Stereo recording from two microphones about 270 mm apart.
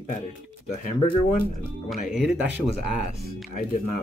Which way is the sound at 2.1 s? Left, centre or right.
Centre.